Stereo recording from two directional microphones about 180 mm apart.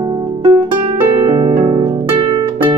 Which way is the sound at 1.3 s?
35° right (ahead or behind).